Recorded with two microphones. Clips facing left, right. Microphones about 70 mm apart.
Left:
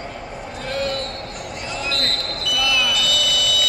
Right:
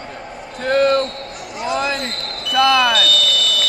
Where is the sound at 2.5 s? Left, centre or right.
Right.